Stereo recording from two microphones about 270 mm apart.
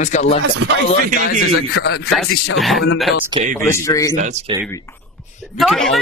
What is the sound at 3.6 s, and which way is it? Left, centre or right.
Speech, centre.